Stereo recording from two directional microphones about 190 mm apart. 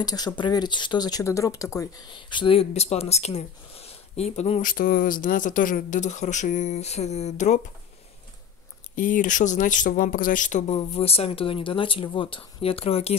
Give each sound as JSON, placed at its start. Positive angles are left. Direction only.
{"t": 0.0, "sound": "speech", "side_deg": 20}
{"t": 8.9, "sound": "speech", "side_deg": 45}